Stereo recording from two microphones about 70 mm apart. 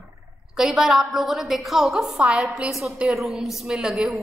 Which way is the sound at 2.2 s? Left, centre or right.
Centre.